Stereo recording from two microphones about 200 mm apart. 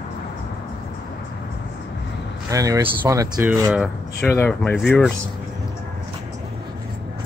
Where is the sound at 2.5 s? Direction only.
15° right (ahead or behind).